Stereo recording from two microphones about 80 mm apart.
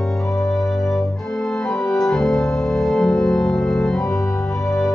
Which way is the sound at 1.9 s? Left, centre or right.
Centre.